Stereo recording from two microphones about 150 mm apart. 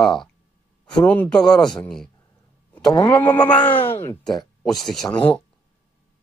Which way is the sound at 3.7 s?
35° left (ahead or behind).